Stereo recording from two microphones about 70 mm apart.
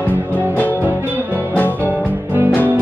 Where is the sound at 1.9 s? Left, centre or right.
Right.